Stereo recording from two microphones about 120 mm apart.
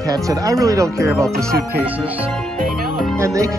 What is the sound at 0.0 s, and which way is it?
Speech, 30° right (ahead or behind).